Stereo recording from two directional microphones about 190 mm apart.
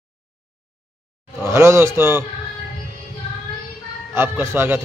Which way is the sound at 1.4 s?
15° right (ahead or behind).